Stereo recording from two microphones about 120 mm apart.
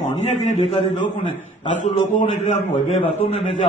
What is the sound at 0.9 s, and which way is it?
A man's voice, 90° left.